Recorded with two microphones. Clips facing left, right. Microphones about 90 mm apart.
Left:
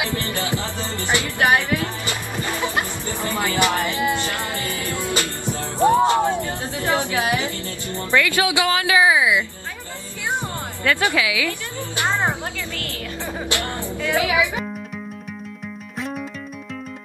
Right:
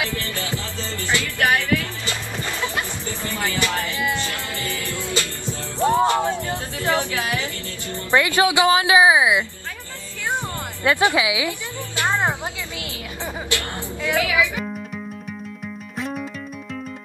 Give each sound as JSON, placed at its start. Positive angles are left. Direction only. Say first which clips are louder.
{"t": 0.0, "sound": "music", "louder": "left 2 dB", "side_deg": 20}
{"t": 6.8, "sound": "a woman's voice", "louder": "left 1 dB", "side_deg": 20}
{"t": 8.1, "sound": "a woman's voice", "louder": "right 2 dB", "side_deg": -20}
{"t": 10.8, "sound": "a woman's voice", "louder": "right 2 dB", "side_deg": -20}
{"t": 14.1, "sound": "speech", "louder": "left 1 dB", "side_deg": 20}
{"t": 16.0, "sound": "music", "louder": "even", "side_deg": 0}